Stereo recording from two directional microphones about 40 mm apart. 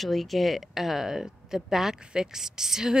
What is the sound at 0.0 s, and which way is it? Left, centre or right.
Speech, centre.